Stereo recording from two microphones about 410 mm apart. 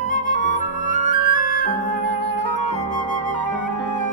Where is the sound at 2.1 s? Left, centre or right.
Right.